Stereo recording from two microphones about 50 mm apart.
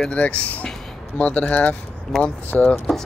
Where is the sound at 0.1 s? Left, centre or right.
Left.